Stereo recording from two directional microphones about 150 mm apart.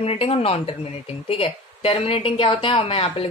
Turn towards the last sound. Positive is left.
turn(degrees=40)  # may be behind; listen again after turning